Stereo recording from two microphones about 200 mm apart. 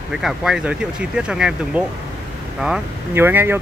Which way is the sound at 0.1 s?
Centre (ahead or behind).